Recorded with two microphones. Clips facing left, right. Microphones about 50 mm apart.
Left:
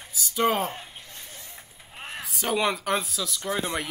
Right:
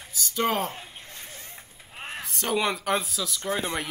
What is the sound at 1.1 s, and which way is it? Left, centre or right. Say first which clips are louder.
Vehicle: right 1 dB; right.